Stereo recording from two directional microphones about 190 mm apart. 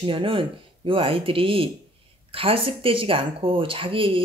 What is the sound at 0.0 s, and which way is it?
Speech, 30° right (ahead or behind).